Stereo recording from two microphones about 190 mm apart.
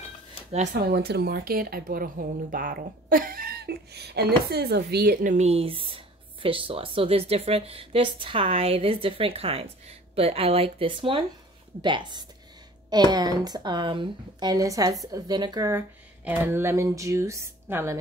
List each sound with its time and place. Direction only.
0.7 s a woman's voice: 55° right (ahead or behind); by 17.9 s 15° right (ahead or behind)